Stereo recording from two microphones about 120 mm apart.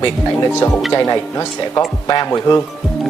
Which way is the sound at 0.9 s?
35° left (ahead or behind).